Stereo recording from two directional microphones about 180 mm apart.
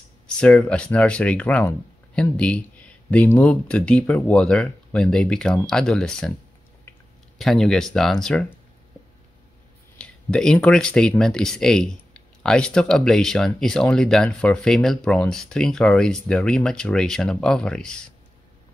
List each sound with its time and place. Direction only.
0.3 s speech: 5° left (ahead or behind)
7.3 s speech: centre (ahead or behind)
9.9 s speech: 5° left (ahead or behind)